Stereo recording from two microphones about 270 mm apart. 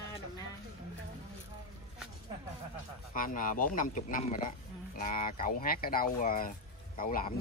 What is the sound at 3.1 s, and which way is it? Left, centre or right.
Speech, left.